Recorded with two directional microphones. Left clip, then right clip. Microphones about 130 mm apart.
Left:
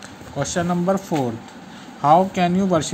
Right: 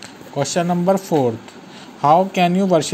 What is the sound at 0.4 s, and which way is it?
Speech, 20° right (ahead or behind).